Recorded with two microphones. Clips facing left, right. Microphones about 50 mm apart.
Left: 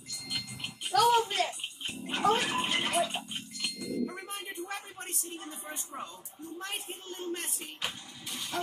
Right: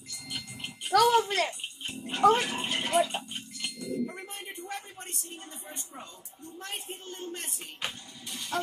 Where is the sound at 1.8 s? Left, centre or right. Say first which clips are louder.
Right 7 dB; centre.